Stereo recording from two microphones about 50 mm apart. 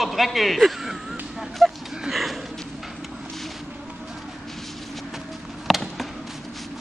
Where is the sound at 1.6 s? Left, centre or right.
Centre.